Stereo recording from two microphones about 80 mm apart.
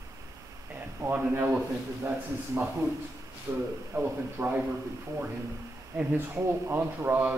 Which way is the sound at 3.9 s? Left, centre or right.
Right.